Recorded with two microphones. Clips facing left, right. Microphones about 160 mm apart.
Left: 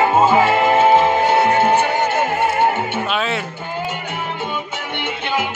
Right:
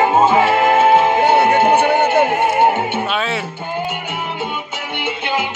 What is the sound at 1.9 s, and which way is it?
Music, 60° right (ahead or behind).